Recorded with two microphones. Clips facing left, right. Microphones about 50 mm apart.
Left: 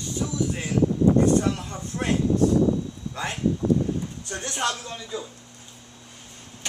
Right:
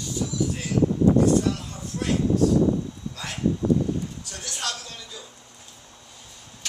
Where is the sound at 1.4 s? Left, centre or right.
Left.